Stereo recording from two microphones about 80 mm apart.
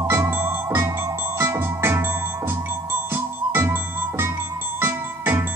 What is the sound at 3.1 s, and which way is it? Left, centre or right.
Music, right.